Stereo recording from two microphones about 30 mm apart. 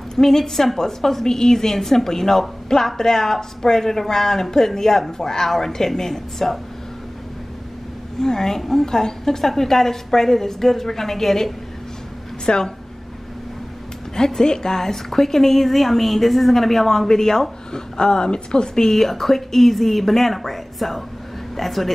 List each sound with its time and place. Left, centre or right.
0.1 s a woman's voice: centre
8.2 s a woman's voice: centre
12.4 s a woman's voice: left
14.1 s a woman's voice: left
18.9 s speech: centre